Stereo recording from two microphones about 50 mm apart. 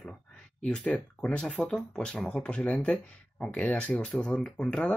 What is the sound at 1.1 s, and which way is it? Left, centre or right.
Speech, left.